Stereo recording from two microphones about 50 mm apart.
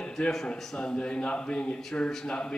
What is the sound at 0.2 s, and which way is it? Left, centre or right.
Speech, centre.